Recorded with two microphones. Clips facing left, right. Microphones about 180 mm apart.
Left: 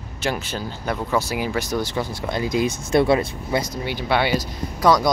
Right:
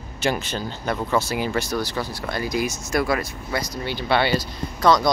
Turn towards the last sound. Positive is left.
turn(degrees=10)  # may be behind; listen again after turning